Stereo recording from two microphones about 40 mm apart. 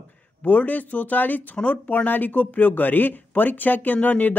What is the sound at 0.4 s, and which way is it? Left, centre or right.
Speech, left.